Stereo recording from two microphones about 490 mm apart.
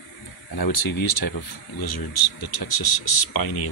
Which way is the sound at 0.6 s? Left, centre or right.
Left.